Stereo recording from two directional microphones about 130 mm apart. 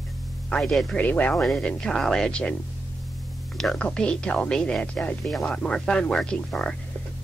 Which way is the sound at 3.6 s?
5° left (ahead or behind).